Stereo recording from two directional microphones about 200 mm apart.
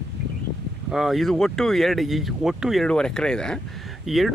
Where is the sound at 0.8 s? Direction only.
Centre (ahead or behind).